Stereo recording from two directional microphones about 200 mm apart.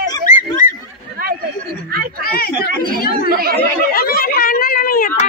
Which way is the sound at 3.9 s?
45° left (ahead or behind).